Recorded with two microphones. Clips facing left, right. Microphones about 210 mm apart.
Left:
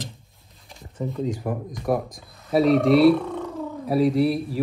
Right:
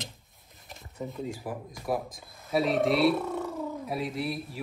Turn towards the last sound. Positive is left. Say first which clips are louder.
# left 12 dB
turn(degrees=0)  # may be behind; listen again after turning